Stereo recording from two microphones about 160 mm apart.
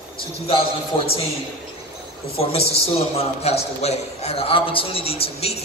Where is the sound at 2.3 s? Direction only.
40° left (ahead or behind).